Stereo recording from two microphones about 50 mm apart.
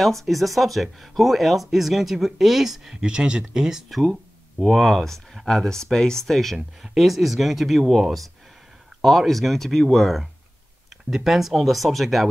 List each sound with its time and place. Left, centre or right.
0.0 s speech: centre
3.0 s speech: centre
3.9 s speech: centre
11.1 s speech: centre